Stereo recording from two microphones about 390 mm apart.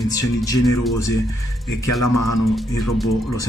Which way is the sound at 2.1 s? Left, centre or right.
Left.